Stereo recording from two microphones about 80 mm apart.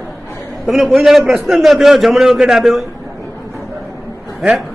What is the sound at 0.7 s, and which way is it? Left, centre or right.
A man's voice, centre.